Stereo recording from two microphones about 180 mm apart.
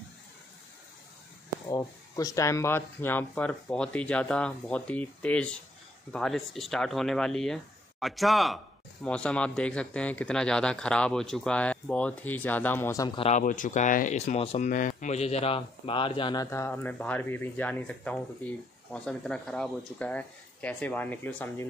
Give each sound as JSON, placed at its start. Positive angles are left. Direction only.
{"t": 1.7, "sound": "speech", "side_deg": 20}
{"t": 13.2, "sound": "speech", "side_deg": 45}
{"t": 16.4, "sound": "speech", "side_deg": 15}